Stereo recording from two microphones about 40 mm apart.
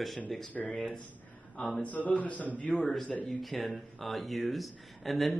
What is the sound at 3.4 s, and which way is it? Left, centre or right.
Speech, centre.